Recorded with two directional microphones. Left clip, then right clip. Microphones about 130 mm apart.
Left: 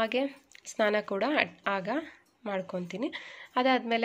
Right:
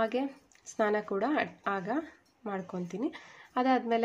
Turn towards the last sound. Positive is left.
turn(degrees=15)  # may be behind; listen again after turning